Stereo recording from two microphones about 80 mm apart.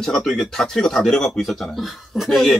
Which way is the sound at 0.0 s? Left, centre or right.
Centre.